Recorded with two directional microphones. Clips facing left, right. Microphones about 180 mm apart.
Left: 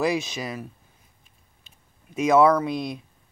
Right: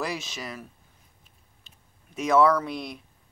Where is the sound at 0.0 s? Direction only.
15° left (ahead or behind).